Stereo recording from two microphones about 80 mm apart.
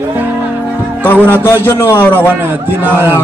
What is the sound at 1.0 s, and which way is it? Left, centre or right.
A man's voice, left.